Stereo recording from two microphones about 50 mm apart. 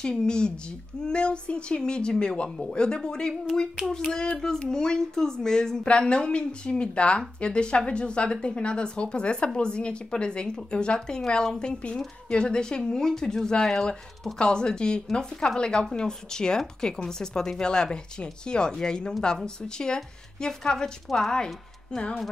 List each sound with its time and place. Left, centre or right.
0.0 s a woman's voice: centre
21.9 s a child's voice: left